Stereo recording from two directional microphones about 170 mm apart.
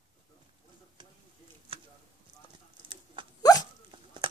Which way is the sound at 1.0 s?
25° right (ahead or behind).